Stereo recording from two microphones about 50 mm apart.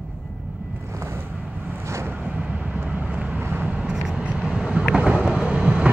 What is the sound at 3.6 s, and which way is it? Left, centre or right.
Vehicle, right.